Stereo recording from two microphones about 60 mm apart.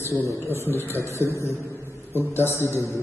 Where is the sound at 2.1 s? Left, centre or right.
Left.